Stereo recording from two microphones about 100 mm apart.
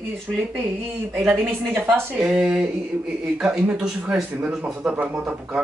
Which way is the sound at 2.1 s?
10° right (ahead or behind).